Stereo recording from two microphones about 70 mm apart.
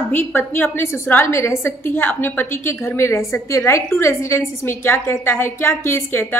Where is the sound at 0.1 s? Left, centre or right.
Left.